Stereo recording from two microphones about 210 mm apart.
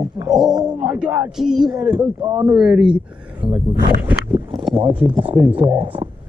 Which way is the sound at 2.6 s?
5° right (ahead or behind).